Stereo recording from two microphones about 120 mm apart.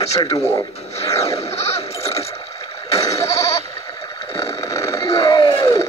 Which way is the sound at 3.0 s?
25° left (ahead or behind).